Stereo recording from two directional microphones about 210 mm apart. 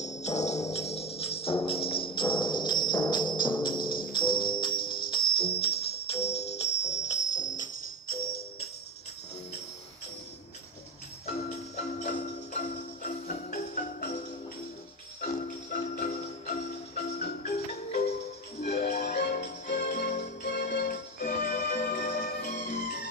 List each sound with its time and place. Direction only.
0.0 s music: 35° left (ahead or behind)
3.3 s music: 40° left (ahead or behind)
3.7 s tambourine: 45° left (ahead or behind)
4.1 s music: 20° left (ahead or behind)
4.7 s music: 45° left (ahead or behind)
5.1 s music: 25° left (ahead or behind); by 8.5 s 45° left (ahead or behind)
11.2 s music: 35° left (ahead or behind)
18.6 s music: 45° left (ahead or behind)